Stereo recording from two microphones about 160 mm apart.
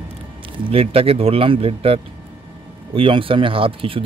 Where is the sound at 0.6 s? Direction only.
35° right (ahead or behind).